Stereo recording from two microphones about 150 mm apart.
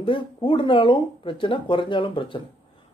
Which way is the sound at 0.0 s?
35° left (ahead or behind).